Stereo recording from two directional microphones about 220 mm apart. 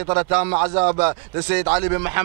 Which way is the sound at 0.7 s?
30° right (ahead or behind).